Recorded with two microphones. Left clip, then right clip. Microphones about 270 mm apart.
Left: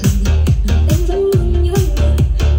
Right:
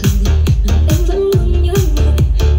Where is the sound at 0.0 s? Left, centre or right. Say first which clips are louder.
Right 1 dB; centre.